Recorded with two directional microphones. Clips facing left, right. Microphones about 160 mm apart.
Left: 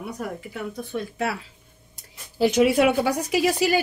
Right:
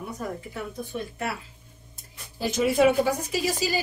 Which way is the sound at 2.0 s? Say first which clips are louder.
Left 11 dB; 75° left (ahead or behind).